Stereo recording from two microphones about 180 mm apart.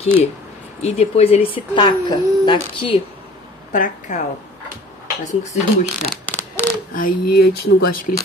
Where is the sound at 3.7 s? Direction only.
45° left (ahead or behind).